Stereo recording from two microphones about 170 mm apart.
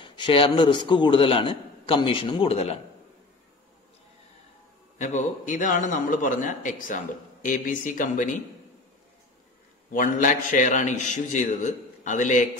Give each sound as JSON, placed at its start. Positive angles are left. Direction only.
{"t": 0.0, "sound": "a man's voice", "side_deg": 30}
{"t": 4.9, "sound": "a man's voice", "side_deg": 45}
{"t": 9.9, "sound": "a man's voice", "side_deg": 50}